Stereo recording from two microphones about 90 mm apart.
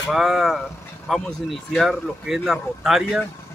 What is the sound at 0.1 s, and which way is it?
Speech, centre (ahead or behind).